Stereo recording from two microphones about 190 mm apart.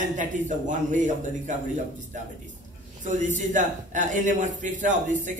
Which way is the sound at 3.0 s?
40° right (ahead or behind).